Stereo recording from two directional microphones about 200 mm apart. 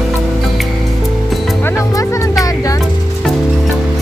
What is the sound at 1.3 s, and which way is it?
Music, centre (ahead or behind).